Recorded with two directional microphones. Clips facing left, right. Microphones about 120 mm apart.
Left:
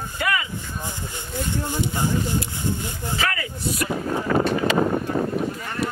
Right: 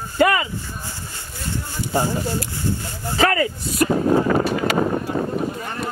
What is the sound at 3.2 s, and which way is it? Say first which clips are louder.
Speech: right 10 dB; 40° right (ahead or behind).